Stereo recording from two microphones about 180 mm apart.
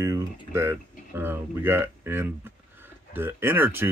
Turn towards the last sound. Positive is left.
turn(degrees=-10)  # may be behind; listen again after turning